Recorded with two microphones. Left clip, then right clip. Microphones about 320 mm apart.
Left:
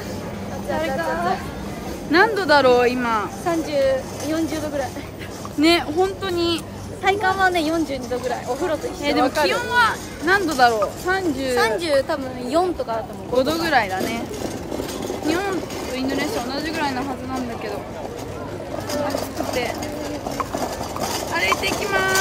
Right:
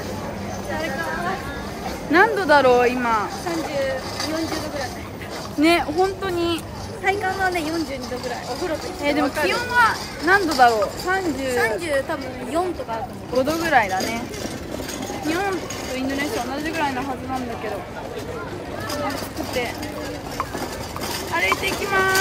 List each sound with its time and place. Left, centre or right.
0.7 s speech: centre
5.6 s speech: centre
7.1 s speech: centre
9.0 s speech: centre
16.0 s speech: centre
20.5 s a sound: left
21.3 s speech: centre
21.6 s speech: left